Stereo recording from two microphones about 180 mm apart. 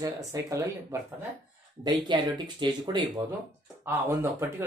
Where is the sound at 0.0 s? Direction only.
20° right (ahead or behind).